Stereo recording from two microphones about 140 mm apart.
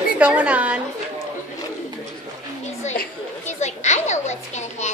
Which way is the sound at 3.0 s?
55° left (ahead or behind).